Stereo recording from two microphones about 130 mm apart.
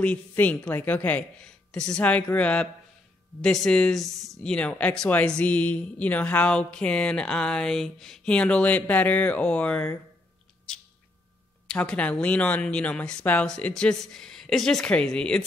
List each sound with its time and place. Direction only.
0.0 s speech: 10° left (ahead or behind)
11.6 s speech: 5° left (ahead or behind)